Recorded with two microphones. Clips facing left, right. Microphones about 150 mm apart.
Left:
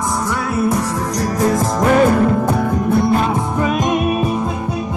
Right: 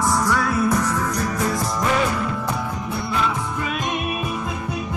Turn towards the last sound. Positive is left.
turn(degrees=40)  # may be behind; listen again after turning